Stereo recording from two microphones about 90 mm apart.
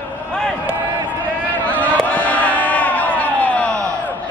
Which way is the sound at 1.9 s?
15° left (ahead or behind).